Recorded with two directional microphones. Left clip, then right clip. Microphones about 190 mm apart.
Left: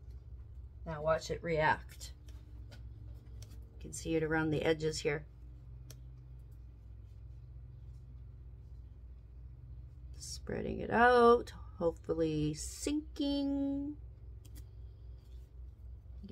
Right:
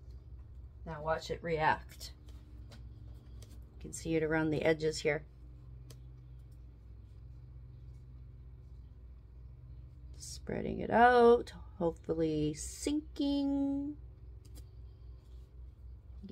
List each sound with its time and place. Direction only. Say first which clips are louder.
0.8 s speech: left 2 dB; 15° right (ahead or behind)
3.8 s speech: right 1 dB; 20° right (ahead or behind)
10.1 s speech: right 1 dB; 15° right (ahead or behind)